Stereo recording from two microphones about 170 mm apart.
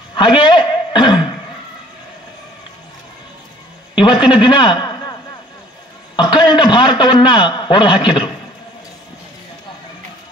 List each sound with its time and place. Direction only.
0.1 s a sound: 30° left (ahead or behind)
4.0 s a man's voice: 30° left (ahead or behind)
6.1 s a man's voice: 30° left (ahead or behind)